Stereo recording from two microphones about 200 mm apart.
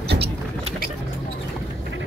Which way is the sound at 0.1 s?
60° right (ahead or behind).